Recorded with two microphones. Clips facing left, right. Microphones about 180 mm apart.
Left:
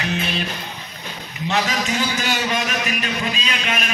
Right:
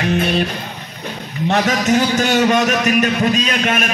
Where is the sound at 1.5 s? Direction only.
50° right (ahead or behind).